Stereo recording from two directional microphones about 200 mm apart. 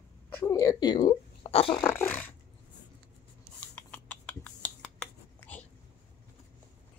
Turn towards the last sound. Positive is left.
turn(degrees=10)  # may be behind; listen again after turning